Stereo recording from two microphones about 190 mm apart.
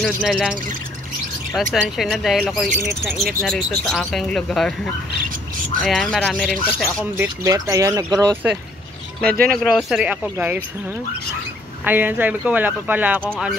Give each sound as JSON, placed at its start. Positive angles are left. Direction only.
{"t": 0.0, "sound": "speech", "side_deg": -5}
{"t": 5.8, "sound": "speech", "side_deg": 0}
{"t": 7.2, "sound": "speech", "side_deg": -15}
{"t": 8.1, "sound": "speech", "side_deg": 0}
{"t": 9.3, "sound": "speech", "side_deg": -50}
{"t": 9.6, "sound": "speech", "side_deg": 0}
{"t": 11.8, "sound": "speech", "side_deg": -10}